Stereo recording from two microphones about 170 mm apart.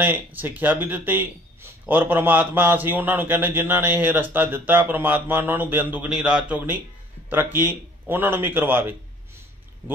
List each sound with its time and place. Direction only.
0.0 s speech: 10° right (ahead or behind)